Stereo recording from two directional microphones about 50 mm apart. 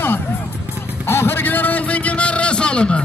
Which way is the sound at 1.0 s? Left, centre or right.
Left.